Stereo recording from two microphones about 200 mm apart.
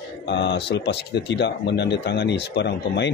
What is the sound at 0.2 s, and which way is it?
Speech, 60° left (ahead or behind).